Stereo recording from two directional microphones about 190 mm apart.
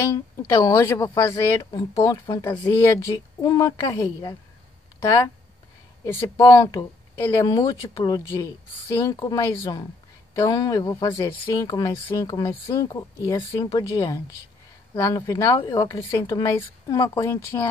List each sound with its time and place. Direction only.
0.1 s a woman's voice: 15° left (ahead or behind)
6.0 s a woman's voice: 15° left (ahead or behind)